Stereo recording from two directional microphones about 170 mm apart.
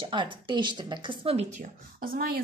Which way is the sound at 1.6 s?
60° right (ahead or behind).